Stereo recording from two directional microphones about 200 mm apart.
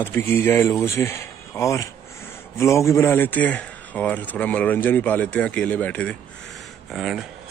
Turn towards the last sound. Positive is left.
turn(degrees=0)  # may be behind; listen again after turning